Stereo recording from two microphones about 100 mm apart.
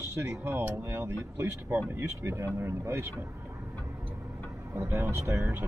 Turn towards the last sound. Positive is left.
turn(degrees=-25)  # may be behind; listen again after turning